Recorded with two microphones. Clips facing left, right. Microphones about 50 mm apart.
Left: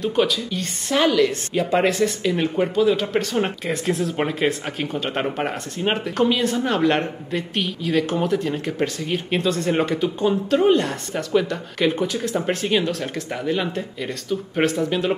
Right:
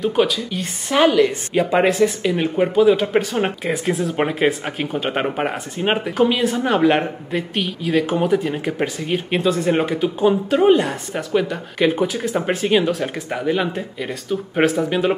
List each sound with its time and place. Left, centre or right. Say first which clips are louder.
0.0 s speech: right 2 dB; centre